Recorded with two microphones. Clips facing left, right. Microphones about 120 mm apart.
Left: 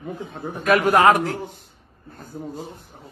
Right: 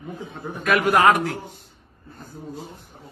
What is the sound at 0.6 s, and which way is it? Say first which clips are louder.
Speech: left 2 dB; 35° left (ahead or behind).